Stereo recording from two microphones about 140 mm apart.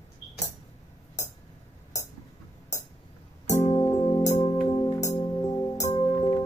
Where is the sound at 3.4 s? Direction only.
55° left (ahead or behind).